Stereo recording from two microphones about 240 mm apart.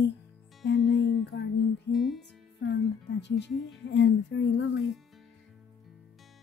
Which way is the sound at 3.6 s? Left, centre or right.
Left.